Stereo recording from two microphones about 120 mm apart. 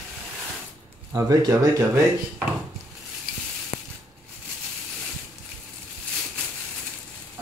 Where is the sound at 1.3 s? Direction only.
30° right (ahead or behind).